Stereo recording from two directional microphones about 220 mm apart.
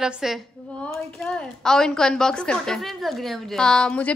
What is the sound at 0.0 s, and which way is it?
A woman's voice, centre (ahead or behind).